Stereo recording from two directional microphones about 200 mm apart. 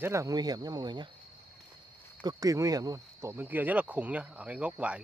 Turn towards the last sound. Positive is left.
turn(degrees=-5)  # may be behind; listen again after turning